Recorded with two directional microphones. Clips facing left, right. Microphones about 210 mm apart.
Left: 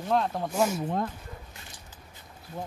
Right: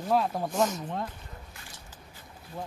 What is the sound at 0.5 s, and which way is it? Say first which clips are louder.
Speech: left 2 dB; 10° left (ahead or behind).